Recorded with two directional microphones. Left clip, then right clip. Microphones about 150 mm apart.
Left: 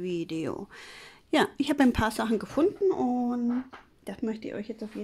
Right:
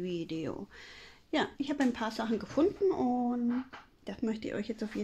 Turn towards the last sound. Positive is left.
turn(degrees=5)  # may be behind; listen again after turning